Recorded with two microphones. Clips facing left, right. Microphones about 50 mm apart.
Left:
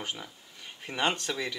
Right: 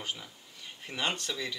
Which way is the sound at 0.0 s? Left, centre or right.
Centre.